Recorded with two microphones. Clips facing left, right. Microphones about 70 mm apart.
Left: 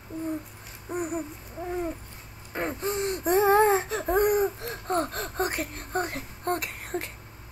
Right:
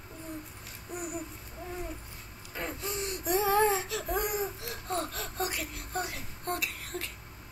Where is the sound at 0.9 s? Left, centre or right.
Left.